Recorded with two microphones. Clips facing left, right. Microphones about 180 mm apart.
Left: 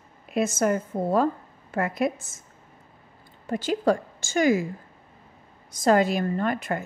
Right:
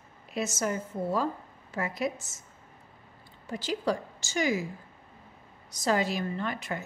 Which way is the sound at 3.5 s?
50° left (ahead or behind).